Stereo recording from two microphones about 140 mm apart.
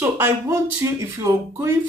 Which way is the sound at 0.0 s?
20° right (ahead or behind).